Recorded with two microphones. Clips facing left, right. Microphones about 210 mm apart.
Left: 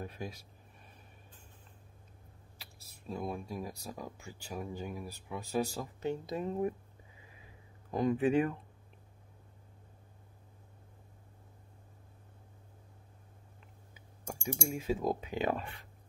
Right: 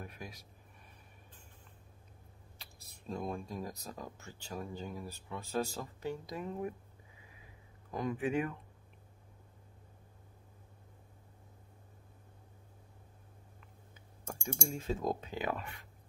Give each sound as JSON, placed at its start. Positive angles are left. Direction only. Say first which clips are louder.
{"t": 0.0, "sound": "speech", "louder": "left 5 dB", "side_deg": 30}
{"t": 2.6, "sound": "speech", "louder": "even", "side_deg": 5}
{"t": 7.9, "sound": "speech", "louder": "left 6 dB", "side_deg": 30}
{"t": 13.9, "sound": "a sound", "louder": "left 2 dB", "side_deg": 10}
{"t": 15.3, "sound": "speech", "louder": "left 4 dB", "side_deg": 25}